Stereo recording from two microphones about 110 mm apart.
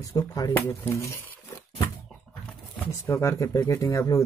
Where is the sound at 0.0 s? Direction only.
30° left (ahead or behind).